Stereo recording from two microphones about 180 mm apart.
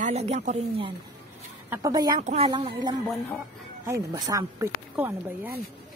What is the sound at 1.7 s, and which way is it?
Speech, 20° right (ahead or behind).